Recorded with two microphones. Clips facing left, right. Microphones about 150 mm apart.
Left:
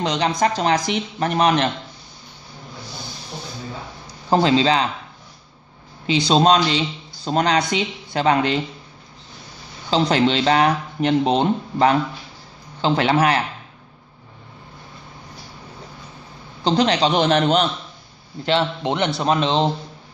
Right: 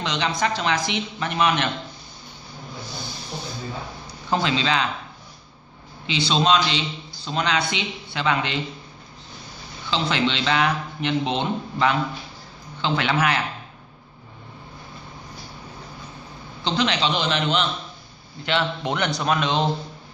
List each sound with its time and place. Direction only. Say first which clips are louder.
0.0 s speech: left 5 dB; 40° left (ahead or behind)
4.3 s speech: left 6 dB; 35° left (ahead or behind)
6.0 s speech: left 5 dB; 40° left (ahead or behind)
9.8 s speech: left 6 dB; 40° left (ahead or behind)
16.6 s speech: left 5 dB; 40° left (ahead or behind)
18.4 s a man's voice: left 4 dB; 30° left (ahead or behind)